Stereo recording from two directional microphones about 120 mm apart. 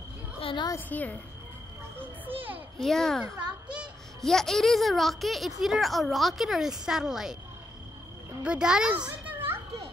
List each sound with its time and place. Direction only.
0.4 s a sound: 50° left (ahead or behind)
0.7 s a woman's voice: 15° left (ahead or behind)
2.8 s speech: 5° left (ahead or behind)
3.6 s child singing: 10° right (ahead or behind)
4.2 s speech: 5° left (ahead or behind)
8.5 s a child's voice: 5° right (ahead or behind)